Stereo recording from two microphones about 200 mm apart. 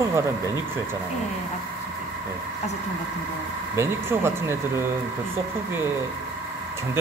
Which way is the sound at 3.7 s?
10° right (ahead or behind).